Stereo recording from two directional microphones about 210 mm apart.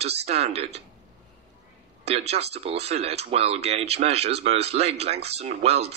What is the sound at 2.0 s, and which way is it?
Speech, 30° right (ahead or behind).